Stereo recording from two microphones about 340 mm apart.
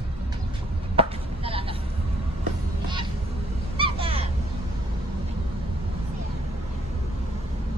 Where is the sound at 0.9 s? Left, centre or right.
Centre.